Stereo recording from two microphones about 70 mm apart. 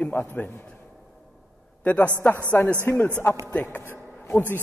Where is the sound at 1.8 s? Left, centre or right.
Left.